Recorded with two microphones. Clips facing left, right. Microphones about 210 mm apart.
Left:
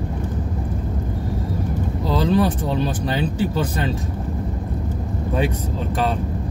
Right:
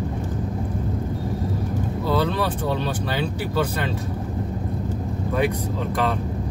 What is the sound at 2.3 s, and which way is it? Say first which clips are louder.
Speech: left 5 dB; 20° left (ahead or behind).